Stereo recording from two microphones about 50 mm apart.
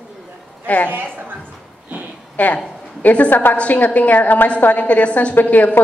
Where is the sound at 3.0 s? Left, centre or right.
Left.